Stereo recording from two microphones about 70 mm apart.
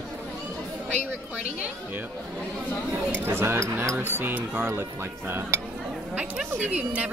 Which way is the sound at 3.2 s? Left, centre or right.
Right.